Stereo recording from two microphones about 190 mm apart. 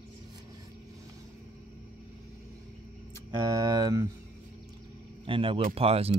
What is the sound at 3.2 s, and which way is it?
Speech, 20° right (ahead or behind).